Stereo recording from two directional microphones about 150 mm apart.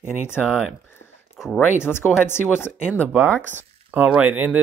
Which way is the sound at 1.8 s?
15° left (ahead or behind).